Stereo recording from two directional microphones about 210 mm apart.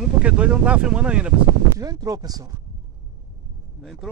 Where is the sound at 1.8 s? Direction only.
15° right (ahead or behind).